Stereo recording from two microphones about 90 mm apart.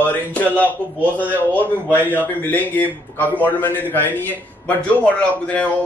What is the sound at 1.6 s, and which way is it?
Speech, 20° right (ahead or behind).